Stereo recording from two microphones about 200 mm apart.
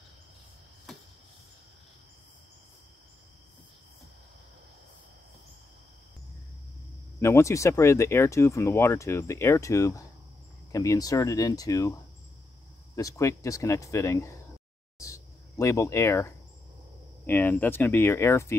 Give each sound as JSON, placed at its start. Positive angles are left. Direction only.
{"t": 0.9, "sound": "a sound", "side_deg": 0}
{"t": 7.2, "sound": "speech", "side_deg": 15}
{"t": 12.9, "sound": "speech", "side_deg": 15}